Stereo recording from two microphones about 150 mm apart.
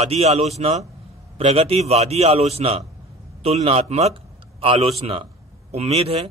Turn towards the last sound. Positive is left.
turn(degrees=-40)  # may be behind; listen again after turning